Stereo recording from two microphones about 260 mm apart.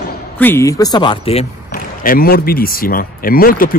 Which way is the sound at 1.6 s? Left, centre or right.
Left.